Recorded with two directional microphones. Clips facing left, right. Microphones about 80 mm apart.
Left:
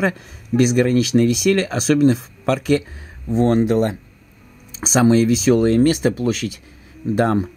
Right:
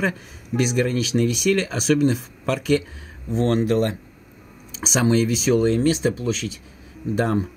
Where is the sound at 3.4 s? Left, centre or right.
Left.